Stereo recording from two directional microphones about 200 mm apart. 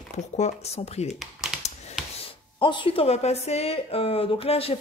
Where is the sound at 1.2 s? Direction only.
5° right (ahead or behind).